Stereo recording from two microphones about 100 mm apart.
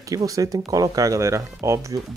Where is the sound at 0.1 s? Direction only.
35° right (ahead or behind).